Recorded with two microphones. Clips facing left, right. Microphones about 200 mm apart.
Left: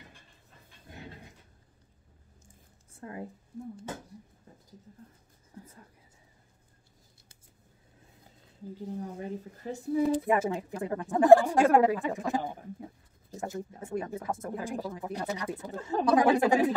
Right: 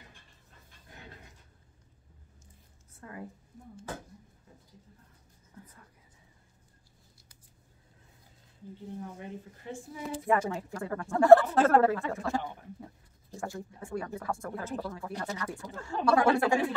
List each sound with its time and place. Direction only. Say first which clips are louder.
3.0 s a woman's voice: left 4 dB; 25° left (ahead or behind)
8.7 s speech: left 4 dB; 40° left (ahead or behind)
10.1 s speech: left 2 dB; 20° left (ahead or behind)
13.4 s speech: left 2 dB; 20° left (ahead or behind)